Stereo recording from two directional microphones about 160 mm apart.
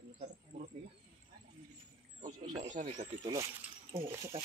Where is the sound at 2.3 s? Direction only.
50° right (ahead or behind).